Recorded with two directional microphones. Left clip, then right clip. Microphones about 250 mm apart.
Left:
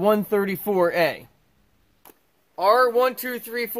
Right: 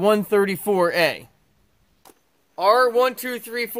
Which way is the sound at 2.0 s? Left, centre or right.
Centre.